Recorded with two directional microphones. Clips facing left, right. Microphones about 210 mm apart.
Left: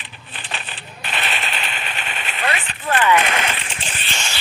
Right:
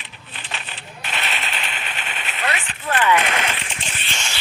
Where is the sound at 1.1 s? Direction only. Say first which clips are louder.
Left 2 dB; 45° left (ahead or behind).